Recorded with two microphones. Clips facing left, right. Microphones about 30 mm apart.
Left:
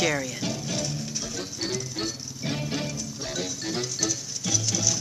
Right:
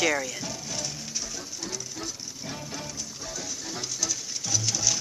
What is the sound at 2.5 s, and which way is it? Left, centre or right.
Music, left.